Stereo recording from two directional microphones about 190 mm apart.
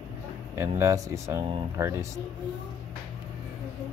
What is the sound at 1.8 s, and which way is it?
Speech, 15° right (ahead or behind).